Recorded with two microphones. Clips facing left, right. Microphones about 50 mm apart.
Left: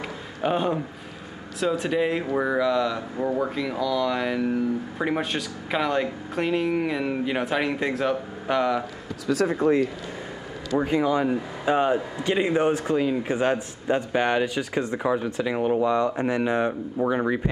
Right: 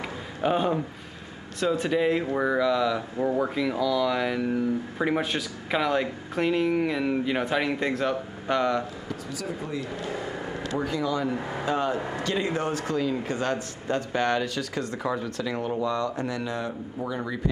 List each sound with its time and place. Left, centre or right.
0.4 s speech: centre
9.3 s speech: left
10.8 s speech: left